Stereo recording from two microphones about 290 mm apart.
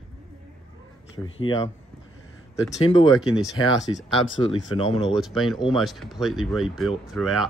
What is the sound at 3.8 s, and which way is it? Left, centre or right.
Speech, left.